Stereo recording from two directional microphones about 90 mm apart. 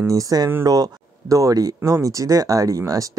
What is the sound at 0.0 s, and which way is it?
Speech, 40° right (ahead or behind).